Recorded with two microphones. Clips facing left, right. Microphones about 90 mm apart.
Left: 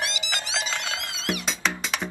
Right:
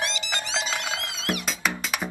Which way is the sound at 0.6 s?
10° right (ahead or behind).